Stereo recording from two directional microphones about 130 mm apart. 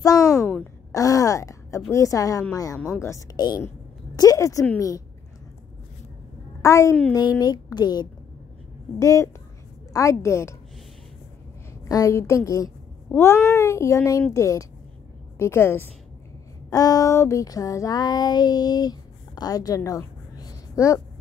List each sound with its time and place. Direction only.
0.9 s speech: 25° left (ahead or behind)
6.6 s a woman's voice: 25° left (ahead or behind)
11.9 s speech: 25° left (ahead or behind)
16.7 s a sound: 25° left (ahead or behind)